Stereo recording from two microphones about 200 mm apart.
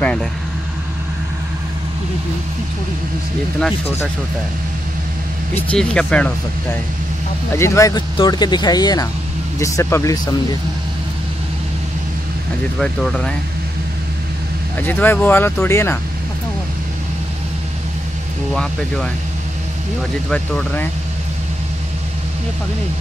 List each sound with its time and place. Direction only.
0.0 s vehicle: 5° left (ahead or behind)
3.5 s speech: centre (ahead or behind)
5.7 s speech: 5° left (ahead or behind)
12.7 s speech: 5° left (ahead or behind)
14.8 s speech: 10° left (ahead or behind)
18.5 s speech: centre (ahead or behind)
20.2 s speech: 5° left (ahead or behind)